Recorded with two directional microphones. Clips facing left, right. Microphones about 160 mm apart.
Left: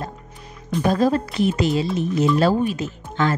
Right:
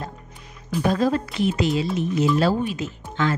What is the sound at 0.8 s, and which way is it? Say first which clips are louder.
A woman's voice: left 2 dB; 40° left (ahead or behind).